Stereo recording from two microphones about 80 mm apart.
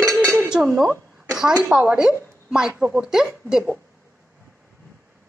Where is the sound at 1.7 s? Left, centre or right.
Centre.